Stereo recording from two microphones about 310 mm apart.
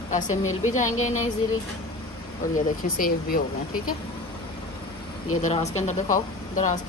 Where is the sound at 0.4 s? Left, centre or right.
Left.